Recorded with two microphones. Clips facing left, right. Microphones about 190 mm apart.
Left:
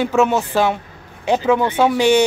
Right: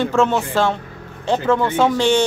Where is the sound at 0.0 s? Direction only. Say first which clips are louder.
Left 1 dB; 10° left (ahead or behind).